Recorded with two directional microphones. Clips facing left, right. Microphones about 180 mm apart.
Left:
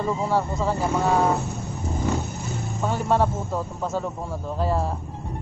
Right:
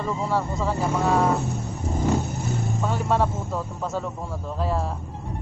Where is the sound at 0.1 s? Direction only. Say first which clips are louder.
Even; centre (ahead or behind).